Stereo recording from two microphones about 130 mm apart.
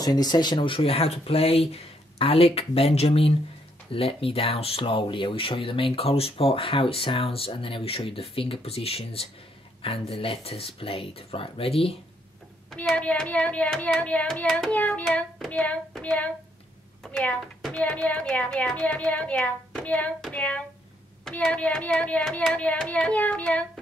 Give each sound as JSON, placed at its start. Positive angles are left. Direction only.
{"t": 0.0, "sound": "speech", "side_deg": 30}
{"t": 12.8, "sound": "a child's voice", "side_deg": 10}